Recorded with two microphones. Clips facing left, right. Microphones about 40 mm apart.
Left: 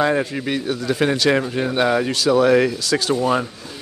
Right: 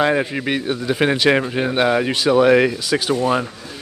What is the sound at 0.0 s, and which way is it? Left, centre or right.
Speech, right.